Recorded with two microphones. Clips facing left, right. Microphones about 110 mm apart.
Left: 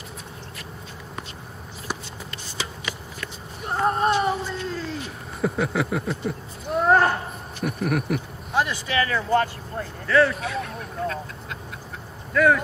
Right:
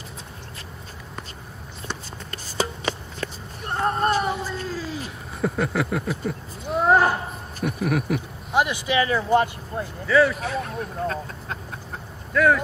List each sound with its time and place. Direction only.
2.3 s a sound: 40° right (ahead or behind)
3.6 s music: centre (ahead or behind)
4.6 s a sound: 5° right (ahead or behind)
8.5 s speech: 15° right (ahead or behind)
10.0 s speech: 5° right (ahead or behind)
10.4 s speech: 35° right (ahead or behind)
12.4 s speech: centre (ahead or behind)